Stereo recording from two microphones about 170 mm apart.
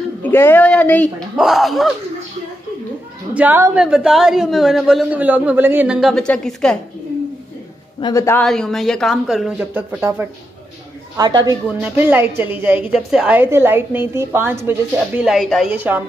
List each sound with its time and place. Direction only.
0.2 s speech: 10° left (ahead or behind)
1.3 s a man's voice: centre (ahead or behind)
3.3 s a woman's voice: 10° right (ahead or behind); by 6.8 s 5° left (ahead or behind)
8.0 s speech: 20° left (ahead or behind)
8.5 s a man's voice: centre (ahead or behind)
11.1 s a woman's voice: 25° right (ahead or behind)
11.6 s a woman's voice: 10° right (ahead or behind)
15.7 s a woman's voice: 10° right (ahead or behind)